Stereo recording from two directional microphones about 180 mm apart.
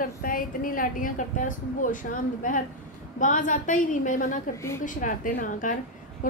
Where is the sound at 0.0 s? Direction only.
50° left (ahead or behind).